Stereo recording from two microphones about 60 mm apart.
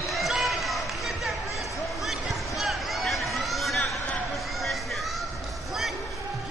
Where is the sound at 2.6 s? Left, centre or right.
Centre.